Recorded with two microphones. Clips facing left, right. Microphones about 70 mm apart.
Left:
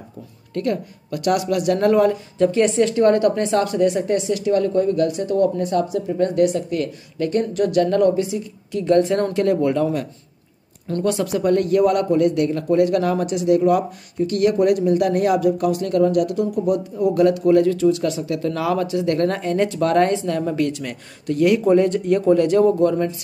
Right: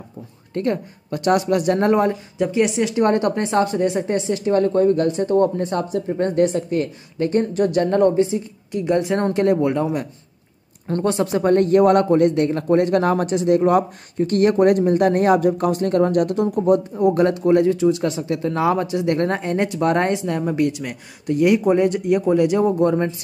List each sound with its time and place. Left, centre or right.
0.6 s speech: right
2.3 s speech: centre
3.0 s a man's voice: right